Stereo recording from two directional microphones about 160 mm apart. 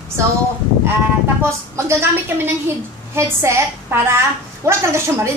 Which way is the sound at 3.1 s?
15° right (ahead or behind).